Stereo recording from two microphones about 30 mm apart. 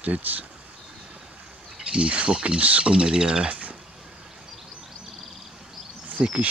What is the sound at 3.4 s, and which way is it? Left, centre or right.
Speech, right.